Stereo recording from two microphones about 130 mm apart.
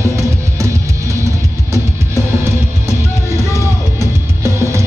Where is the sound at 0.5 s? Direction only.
25° right (ahead or behind).